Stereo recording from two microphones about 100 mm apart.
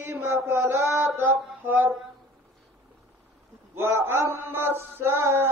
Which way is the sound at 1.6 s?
20° right (ahead or behind).